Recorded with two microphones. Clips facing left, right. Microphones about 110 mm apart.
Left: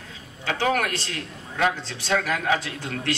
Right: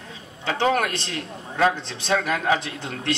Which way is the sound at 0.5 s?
25° right (ahead or behind).